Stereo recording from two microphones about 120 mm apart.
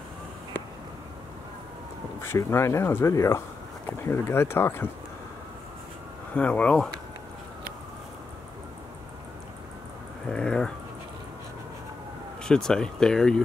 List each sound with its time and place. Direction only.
2.2 s speech: 20° left (ahead or behind)
6.3 s speech: 10° left (ahead or behind)
10.2 s a sound: 5° left (ahead or behind)
12.4 s speech: 5° left (ahead or behind)